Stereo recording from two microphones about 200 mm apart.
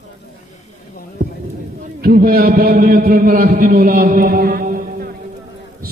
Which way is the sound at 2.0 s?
50° right (ahead or behind).